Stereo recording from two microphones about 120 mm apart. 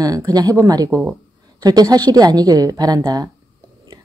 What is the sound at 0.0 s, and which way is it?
Speech, 30° right (ahead or behind).